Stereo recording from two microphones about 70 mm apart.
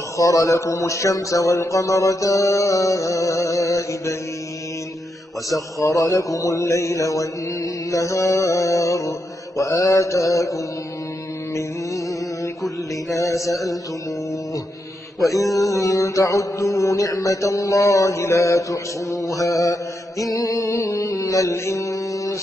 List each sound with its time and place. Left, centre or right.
0.2 s mantra: left
5.8 s mantra: left
13.2 s mantra: left
15.5 s mantra: left